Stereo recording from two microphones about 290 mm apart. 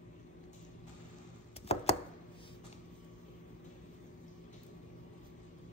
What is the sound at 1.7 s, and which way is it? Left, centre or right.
Chopping, left.